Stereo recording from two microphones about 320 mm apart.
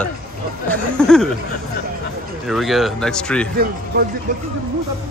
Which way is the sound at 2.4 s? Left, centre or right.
Centre.